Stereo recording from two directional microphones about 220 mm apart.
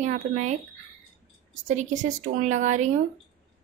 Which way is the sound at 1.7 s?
35° right (ahead or behind).